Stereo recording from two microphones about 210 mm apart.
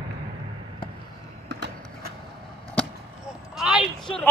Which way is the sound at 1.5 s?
55° right (ahead or behind).